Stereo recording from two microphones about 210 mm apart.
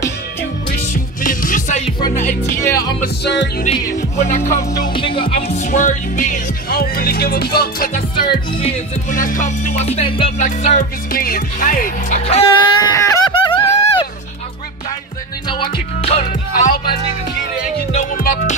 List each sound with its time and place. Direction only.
1.2 s music: 40° left (ahead or behind)
2.6 s music: 15° left (ahead or behind)
3.0 s music: 50° left (ahead or behind)
4.5 s music: 15° left (ahead or behind); by 7.9 s 50° left (ahead or behind)
9.1 s music: 40° left (ahead or behind)
12.9 s music: 15° left (ahead or behind)
15.4 s music: 20° left (ahead or behind)
17.9 s music: 40° left (ahead or behind)